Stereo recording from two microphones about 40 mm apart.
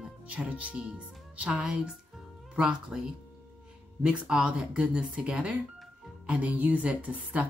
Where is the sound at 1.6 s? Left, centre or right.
Centre.